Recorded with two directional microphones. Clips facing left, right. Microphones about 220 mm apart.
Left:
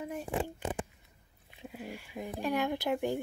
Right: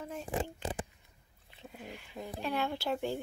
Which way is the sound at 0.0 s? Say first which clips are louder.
Left 3 dB; 15° left (ahead or behind).